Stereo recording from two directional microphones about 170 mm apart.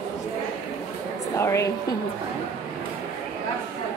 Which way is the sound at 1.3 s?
15° left (ahead or behind).